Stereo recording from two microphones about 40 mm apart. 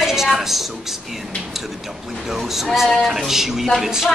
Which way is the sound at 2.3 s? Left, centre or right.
Centre.